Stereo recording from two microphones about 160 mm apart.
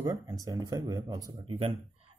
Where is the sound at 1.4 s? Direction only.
35° right (ahead or behind).